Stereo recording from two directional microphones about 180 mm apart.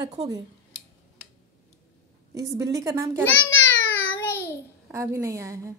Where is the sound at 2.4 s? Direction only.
20° right (ahead or behind).